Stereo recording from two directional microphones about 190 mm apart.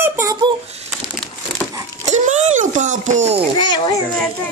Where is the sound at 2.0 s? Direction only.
40° right (ahead or behind).